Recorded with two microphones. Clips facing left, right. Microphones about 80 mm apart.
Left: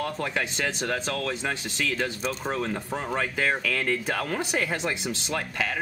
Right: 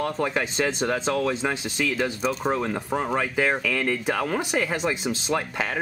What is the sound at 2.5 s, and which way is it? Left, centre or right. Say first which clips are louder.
Speech: right 4 dB; centre.